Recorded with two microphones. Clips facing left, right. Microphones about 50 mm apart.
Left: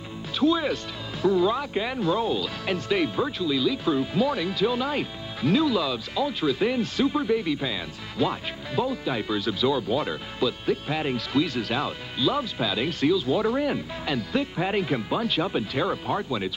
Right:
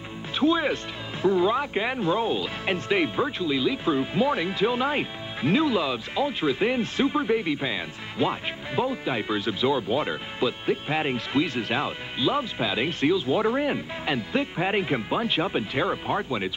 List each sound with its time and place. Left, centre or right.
0.4 s speech: right